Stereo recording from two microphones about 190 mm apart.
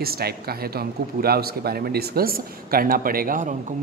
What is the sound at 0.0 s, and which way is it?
A man's voice, 55° right (ahead or behind).